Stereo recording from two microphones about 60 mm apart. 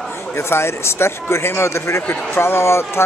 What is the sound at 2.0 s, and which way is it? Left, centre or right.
Speech, left.